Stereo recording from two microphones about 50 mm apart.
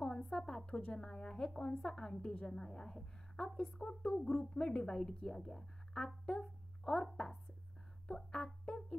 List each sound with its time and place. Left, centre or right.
0.2 s a woman's voice: centre
8.3 s music: centre